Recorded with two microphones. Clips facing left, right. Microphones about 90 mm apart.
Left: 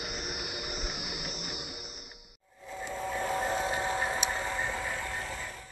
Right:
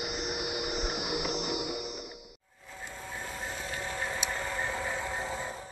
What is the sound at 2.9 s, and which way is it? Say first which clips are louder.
Vehicle: left 9 dB; 80° left.